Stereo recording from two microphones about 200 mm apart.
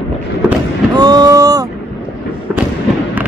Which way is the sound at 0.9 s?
20° right (ahead or behind).